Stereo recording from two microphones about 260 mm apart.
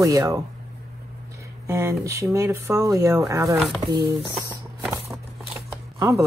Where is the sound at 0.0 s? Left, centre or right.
Centre.